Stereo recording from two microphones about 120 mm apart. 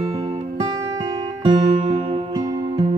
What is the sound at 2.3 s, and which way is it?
Music, 35° right (ahead or behind).